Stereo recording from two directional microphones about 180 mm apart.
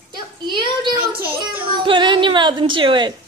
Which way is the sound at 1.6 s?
30° right (ahead or behind).